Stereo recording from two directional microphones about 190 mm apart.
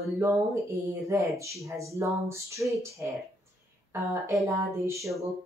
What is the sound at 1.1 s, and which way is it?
Speech, 15° right (ahead or behind).